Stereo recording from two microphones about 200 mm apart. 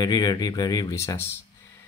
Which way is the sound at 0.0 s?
20° left (ahead or behind).